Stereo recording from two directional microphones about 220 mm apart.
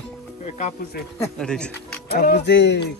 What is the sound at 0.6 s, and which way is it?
Speech, 35° left (ahead or behind).